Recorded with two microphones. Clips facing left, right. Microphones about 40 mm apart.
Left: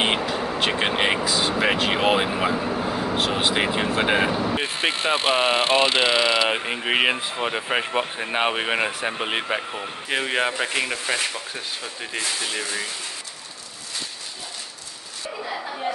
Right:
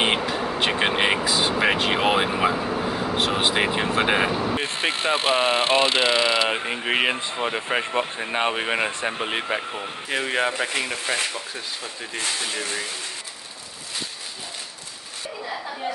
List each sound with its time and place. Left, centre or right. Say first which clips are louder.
0.0 s vehicle: even; centre
3.5 s speech: even; centre
10.0 s speech: even; centre